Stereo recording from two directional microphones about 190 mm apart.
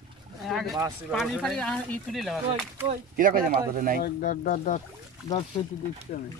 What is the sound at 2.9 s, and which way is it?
Speech, 45° right (ahead or behind).